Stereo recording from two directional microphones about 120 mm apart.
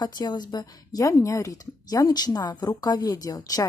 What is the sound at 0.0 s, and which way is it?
Speech, 35° left (ahead or behind).